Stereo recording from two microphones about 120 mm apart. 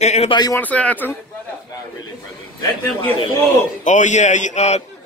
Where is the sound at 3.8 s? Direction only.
90° left; by 4.8 s 75° left (ahead or behind).